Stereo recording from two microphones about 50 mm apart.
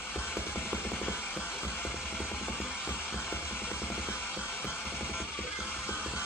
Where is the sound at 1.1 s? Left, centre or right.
Left.